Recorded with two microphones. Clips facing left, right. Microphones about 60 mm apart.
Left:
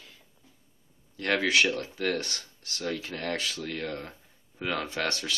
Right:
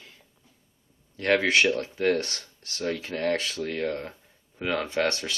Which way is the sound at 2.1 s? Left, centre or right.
Right.